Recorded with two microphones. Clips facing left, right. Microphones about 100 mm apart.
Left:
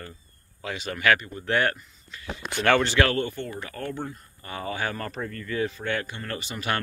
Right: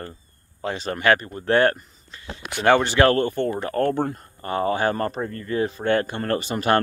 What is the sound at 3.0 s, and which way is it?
Speech, 45° right (ahead or behind).